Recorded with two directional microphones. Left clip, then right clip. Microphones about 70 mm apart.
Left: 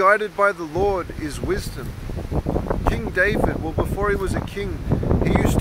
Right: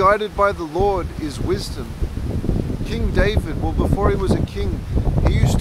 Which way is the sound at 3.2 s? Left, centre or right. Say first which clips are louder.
Left 1 dB; centre.